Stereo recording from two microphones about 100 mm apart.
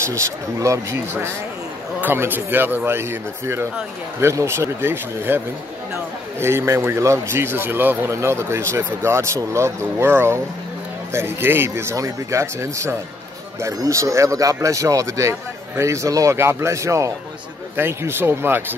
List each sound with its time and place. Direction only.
0.0 s a man's voice: 30° right (ahead or behind)
6.4 s a man's voice: 25° right (ahead or behind)